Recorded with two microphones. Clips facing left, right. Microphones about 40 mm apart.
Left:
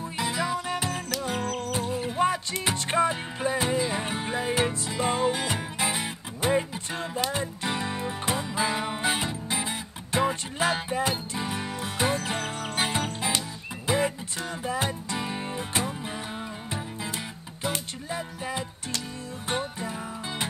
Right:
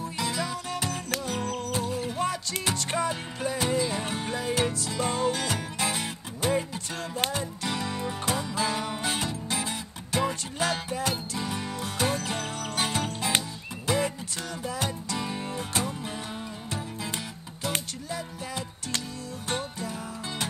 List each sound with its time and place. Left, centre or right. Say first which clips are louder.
0.0 s music: left 2 dB; centre